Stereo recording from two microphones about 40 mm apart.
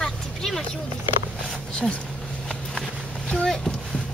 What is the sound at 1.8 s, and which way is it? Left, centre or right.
Speech, centre.